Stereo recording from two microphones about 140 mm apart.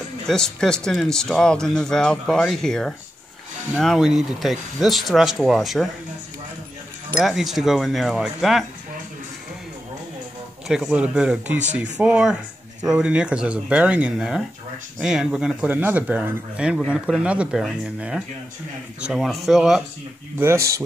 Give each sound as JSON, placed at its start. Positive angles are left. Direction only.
{"t": 0.3, "sound": "speech", "side_deg": 5}
{"t": 7.1, "sound": "speech", "side_deg": 0}
{"t": 10.7, "sound": "speech", "side_deg": -5}
{"t": 20.3, "sound": "speech", "side_deg": -20}